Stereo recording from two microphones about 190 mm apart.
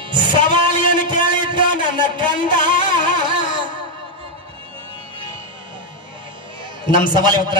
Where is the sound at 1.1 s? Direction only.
25° right (ahead or behind).